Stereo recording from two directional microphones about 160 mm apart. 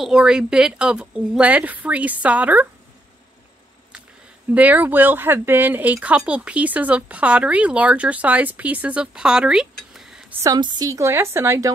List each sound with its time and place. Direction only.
0.0 s speech: 5° right (ahead or behind)
4.6 s speech: 10° right (ahead or behind)
10.4 s a woman's voice: 25° right (ahead or behind)